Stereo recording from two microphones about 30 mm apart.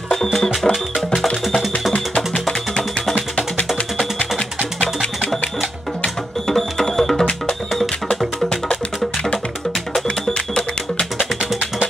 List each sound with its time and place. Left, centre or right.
0.7 s music: centre
2.3 s music: centre
3.2 s music: left
4.0 s music: left
6.4 s music: centre
10.3 s music: left